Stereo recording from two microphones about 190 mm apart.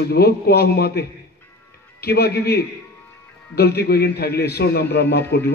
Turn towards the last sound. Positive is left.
turn(degrees=60)  # may be behind; listen again after turning